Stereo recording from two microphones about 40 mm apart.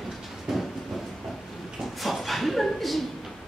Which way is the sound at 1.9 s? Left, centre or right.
Centre.